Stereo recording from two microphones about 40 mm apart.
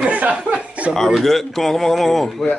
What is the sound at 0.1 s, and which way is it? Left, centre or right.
Chuckle, right.